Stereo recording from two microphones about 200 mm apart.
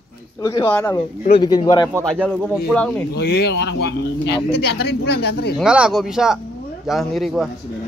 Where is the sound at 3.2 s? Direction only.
55° left (ahead or behind).